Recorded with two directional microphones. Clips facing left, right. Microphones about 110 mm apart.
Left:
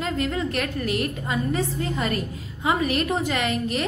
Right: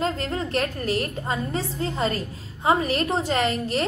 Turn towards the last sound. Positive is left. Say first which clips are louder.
# right 2 dB
turn(degrees=-35)  # may be behind; listen again after turning